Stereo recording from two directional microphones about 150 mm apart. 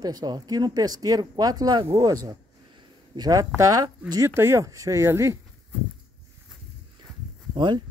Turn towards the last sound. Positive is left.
turn(degrees=-30)  # may be behind; listen again after turning